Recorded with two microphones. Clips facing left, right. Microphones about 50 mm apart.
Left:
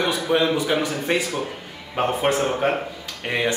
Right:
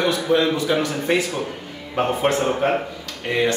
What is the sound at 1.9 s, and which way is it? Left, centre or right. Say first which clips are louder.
Speech: right 1 dB; centre.